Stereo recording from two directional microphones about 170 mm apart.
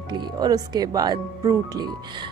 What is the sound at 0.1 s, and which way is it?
Speech, 25° right (ahead or behind).